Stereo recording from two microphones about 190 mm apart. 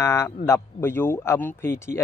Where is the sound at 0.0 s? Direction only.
15° left (ahead or behind).